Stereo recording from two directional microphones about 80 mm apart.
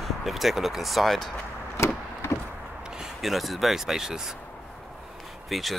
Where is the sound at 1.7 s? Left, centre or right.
Left.